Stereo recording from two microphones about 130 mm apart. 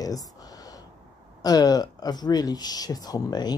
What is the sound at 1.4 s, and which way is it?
A woman's voice, 30° left (ahead or behind).